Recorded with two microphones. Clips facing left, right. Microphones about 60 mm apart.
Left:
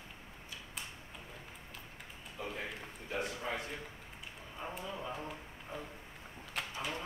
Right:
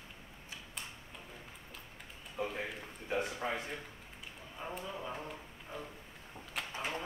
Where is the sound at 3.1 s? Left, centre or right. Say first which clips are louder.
Right 3 dB; right.